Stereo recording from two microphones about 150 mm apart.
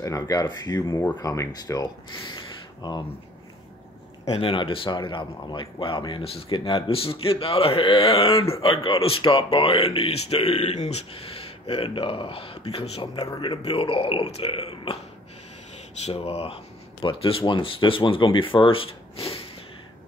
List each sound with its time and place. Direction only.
0.0 s speech: 25° left (ahead or behind)
4.3 s speech: 35° left (ahead or behind)
13.1 s speech: 30° left (ahead or behind)
16.1 s speech: 40° left (ahead or behind)